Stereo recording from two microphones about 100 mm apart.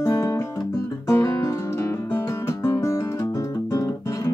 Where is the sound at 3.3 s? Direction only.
35° left (ahead or behind).